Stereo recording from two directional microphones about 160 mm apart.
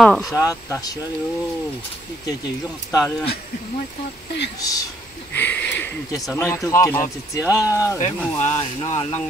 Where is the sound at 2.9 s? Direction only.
20° left (ahead or behind).